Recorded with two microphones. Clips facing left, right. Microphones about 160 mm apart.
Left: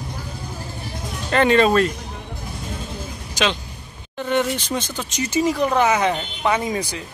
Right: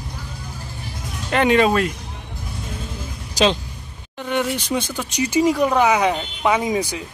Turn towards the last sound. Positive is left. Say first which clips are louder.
# right 2 dB
turn(degrees=-15)  # may be behind; listen again after turning